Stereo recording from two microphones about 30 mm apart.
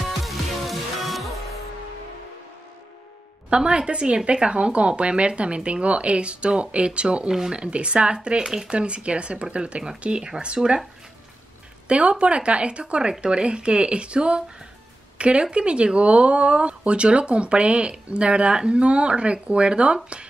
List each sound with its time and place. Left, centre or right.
0.0 s music: centre
3.4 s speech: right
7.2 s speech: centre
7.5 s speech: right
11.9 s speech: right